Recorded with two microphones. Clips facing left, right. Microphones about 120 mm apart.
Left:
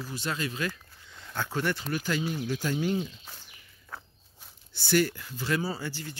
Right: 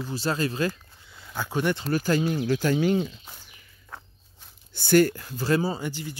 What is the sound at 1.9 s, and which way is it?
Speech, 40° right (ahead or behind).